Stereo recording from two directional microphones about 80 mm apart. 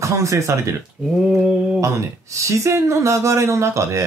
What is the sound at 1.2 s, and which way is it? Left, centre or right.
Mantra, centre.